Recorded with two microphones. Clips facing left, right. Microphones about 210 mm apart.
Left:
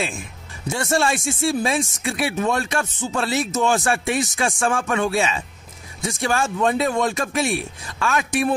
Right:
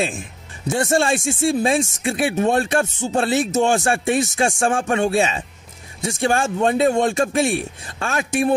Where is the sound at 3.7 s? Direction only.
30° right (ahead or behind).